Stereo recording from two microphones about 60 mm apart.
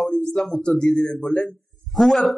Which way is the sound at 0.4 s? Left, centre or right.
Centre.